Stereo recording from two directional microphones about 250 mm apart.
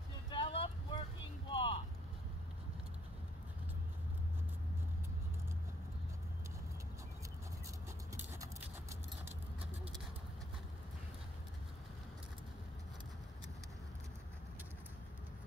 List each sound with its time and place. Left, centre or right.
0.3 s vehicle: left
8.1 s a sound: centre
9.2 s vehicle: centre